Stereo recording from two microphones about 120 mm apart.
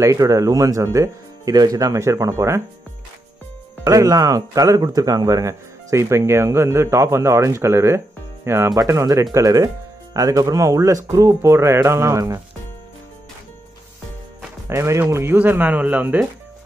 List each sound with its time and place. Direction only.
0.0 s speech: 25° right (ahead or behind)
3.8 s speech: 30° right (ahead or behind)
14.7 s speech: 20° right (ahead or behind)